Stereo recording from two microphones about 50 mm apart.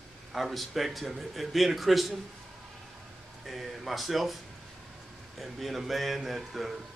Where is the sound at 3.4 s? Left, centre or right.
Centre.